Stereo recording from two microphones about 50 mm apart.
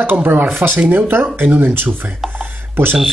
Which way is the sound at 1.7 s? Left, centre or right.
Right.